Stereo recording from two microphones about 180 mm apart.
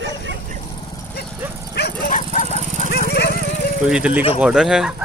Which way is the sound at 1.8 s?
65° left (ahead or behind).